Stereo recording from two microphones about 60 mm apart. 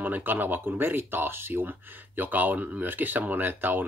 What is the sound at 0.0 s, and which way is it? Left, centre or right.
Speech, right.